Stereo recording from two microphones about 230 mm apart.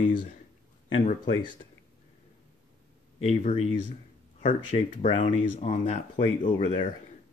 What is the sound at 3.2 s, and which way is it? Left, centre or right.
Speech, left.